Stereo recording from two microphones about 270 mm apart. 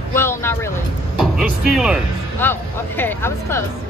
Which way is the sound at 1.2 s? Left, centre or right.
Centre.